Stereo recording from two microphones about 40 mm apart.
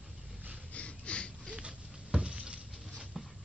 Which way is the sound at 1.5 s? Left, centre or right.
Right.